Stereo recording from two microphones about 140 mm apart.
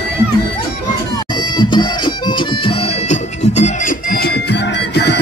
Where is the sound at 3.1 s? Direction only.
55° left (ahead or behind).